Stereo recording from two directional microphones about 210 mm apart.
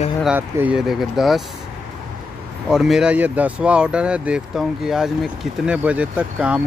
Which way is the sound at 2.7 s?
Centre (ahead or behind).